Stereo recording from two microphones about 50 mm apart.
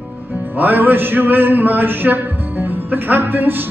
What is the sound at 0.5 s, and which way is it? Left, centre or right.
Music, right.